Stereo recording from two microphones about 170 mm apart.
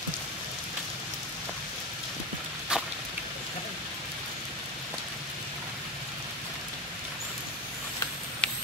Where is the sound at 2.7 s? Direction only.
5° right (ahead or behind).